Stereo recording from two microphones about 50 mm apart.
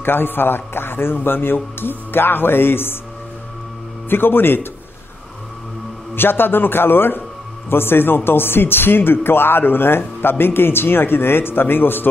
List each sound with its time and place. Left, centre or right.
0.0 s a man's voice: left
4.1 s a man's voice: left
6.1 s a man's voice: left